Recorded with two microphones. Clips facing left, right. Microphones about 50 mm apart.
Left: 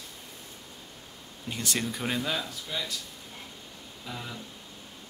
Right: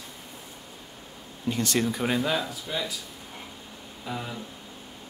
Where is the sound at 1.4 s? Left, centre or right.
Centre.